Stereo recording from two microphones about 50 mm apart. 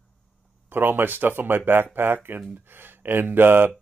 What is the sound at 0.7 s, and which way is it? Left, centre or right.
Speech, right.